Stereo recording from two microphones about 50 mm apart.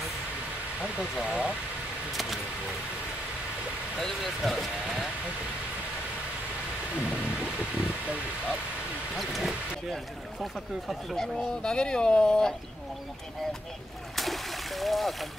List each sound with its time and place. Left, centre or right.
1.2 s speech: centre
2.1 s speech: centre
4.0 s speech: centre
7.0 s speech: centre
9.1 s speech: centre
11.1 s speech: centre
14.1 s speech: centre